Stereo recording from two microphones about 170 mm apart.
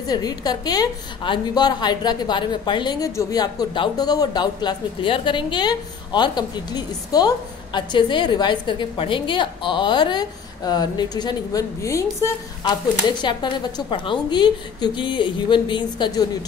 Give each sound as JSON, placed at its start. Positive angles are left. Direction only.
{"t": 0.0, "sound": "a woman's voice", "side_deg": 25}